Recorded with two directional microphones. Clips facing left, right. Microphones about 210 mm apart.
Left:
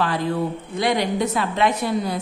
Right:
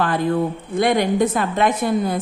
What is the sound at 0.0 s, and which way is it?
A woman's voice, 50° right (ahead or behind).